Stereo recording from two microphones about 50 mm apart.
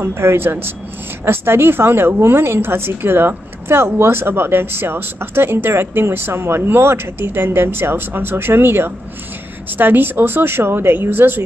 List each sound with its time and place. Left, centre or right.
0.0 s speech: right